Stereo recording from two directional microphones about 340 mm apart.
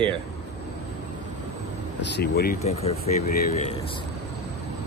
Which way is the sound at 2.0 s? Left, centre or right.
Left.